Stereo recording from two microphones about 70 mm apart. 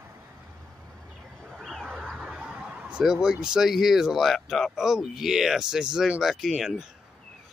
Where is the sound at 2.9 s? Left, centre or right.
Centre.